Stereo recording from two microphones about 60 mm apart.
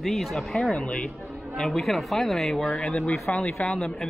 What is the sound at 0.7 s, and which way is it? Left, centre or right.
Speech, centre.